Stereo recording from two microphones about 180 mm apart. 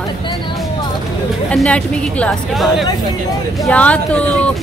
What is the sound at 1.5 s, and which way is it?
A woman's voice, 5° left (ahead or behind).